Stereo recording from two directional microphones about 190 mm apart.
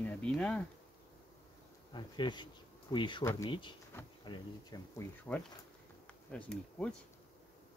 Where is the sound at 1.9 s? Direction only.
25° left (ahead or behind).